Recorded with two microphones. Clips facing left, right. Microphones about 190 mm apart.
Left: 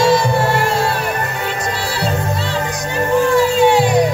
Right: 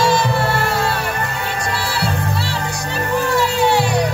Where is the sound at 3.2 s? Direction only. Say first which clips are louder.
Left 5 dB; 20° left (ahead or behind).